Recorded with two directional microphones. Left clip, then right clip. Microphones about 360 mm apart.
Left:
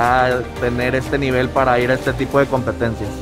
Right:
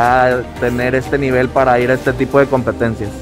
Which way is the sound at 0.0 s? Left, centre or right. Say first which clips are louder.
Right 3 dB; centre.